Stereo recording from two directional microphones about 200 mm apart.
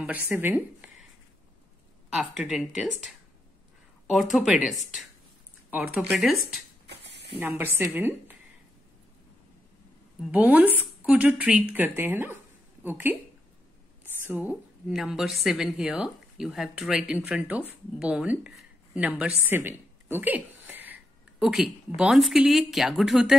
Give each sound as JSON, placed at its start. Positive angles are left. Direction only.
{"t": 0.3, "sound": "speech", "side_deg": -10}
{"t": 2.0, "sound": "a woman's voice", "side_deg": -5}
{"t": 6.9, "sound": "spray", "side_deg": -55}
{"t": 7.3, "sound": "speech", "side_deg": -10}
{"t": 10.3, "sound": "a woman's voice", "side_deg": -10}